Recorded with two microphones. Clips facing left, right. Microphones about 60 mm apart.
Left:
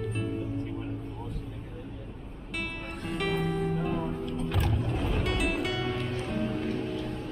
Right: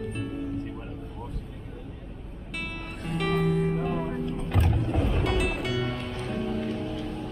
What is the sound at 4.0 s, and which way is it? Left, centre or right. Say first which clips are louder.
Music: right 2 dB; right.